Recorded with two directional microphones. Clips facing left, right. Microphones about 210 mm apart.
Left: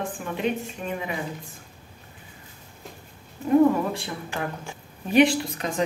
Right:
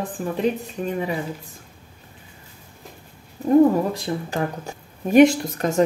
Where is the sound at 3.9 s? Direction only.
40° right (ahead or behind).